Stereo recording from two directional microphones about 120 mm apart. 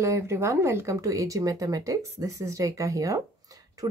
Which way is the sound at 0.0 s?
25° right (ahead or behind).